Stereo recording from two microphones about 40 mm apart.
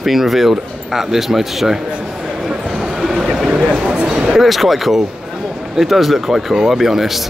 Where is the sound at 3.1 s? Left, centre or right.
Centre.